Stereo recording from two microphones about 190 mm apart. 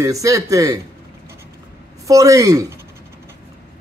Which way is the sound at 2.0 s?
15° right (ahead or behind).